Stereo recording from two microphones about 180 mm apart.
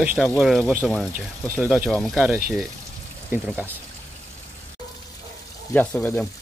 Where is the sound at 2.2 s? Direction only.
15° right (ahead or behind).